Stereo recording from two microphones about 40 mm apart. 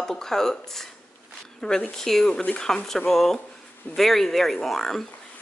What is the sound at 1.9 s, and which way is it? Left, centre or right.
Speech, centre.